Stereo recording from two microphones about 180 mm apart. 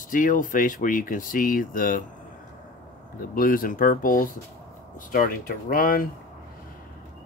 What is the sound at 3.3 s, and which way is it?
Speech, 50° left (ahead or behind).